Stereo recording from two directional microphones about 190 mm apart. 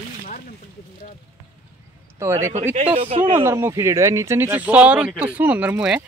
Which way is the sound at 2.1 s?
15° right (ahead or behind).